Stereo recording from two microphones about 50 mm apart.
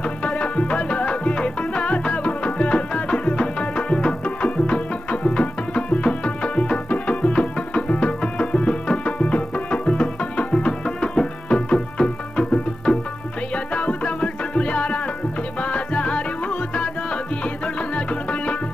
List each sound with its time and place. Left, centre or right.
0.2 s music: left